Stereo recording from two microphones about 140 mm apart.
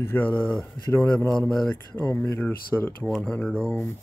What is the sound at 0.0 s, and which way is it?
Speech, 15° left (ahead or behind).